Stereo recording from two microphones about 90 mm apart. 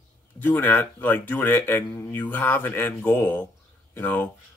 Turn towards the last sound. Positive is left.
turn(degrees=20)  # may be behind; listen again after turning